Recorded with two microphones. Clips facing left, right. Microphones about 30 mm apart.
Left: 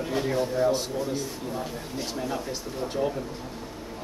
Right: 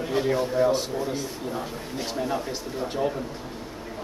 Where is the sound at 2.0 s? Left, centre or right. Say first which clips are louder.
Right 3 dB; centre.